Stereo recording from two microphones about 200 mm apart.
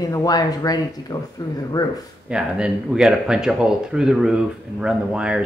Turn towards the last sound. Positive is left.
turn(degrees=-5)  # may be behind; listen again after turning